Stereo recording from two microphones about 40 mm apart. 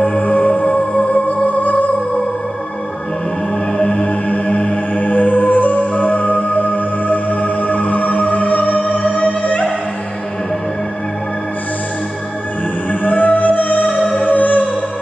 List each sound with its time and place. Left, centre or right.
0.2 s music: left
3.7 s music: left
13.0 s music: left